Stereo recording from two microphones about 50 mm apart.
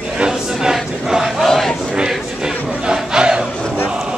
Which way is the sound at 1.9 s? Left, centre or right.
Centre.